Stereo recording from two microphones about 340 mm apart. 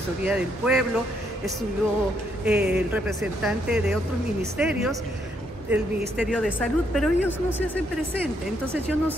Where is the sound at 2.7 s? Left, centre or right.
Centre.